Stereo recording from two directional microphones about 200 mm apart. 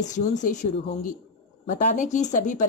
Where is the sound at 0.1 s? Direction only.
40° left (ahead or behind).